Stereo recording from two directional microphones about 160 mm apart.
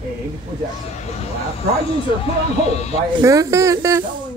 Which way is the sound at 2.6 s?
40° left (ahead or behind).